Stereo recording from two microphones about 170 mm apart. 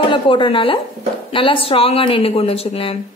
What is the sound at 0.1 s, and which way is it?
A woman's voice, 30° left (ahead or behind).